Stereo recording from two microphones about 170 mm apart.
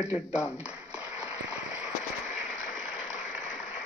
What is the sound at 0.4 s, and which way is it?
Speech, 15° left (ahead or behind).